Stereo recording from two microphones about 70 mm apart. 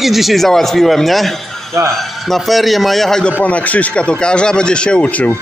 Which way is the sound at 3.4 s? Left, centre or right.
Left.